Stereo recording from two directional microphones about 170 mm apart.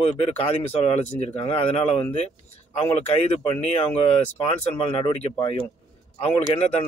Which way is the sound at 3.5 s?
35° left (ahead or behind).